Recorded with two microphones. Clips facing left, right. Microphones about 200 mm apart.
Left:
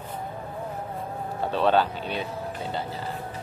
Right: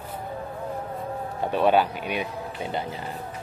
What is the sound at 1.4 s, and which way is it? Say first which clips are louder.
Speech: right 1 dB; 15° right (ahead or behind).